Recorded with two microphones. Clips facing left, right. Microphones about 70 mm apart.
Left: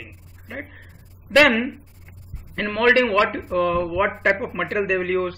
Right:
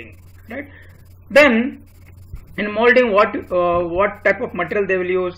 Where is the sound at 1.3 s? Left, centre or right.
Centre.